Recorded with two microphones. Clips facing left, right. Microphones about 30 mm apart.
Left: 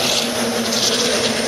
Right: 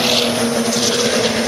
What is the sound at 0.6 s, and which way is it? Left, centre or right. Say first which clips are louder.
Vehicle: right 2 dB; centre.